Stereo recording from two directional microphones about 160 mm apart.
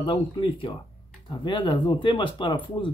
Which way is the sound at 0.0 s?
35° left (ahead or behind).